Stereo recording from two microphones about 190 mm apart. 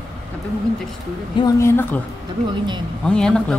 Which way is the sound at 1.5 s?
15° left (ahead or behind).